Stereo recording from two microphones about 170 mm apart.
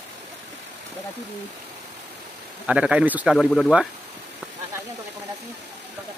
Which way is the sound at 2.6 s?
5° right (ahead or behind).